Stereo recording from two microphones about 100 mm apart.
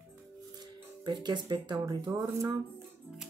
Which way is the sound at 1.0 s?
45° right (ahead or behind).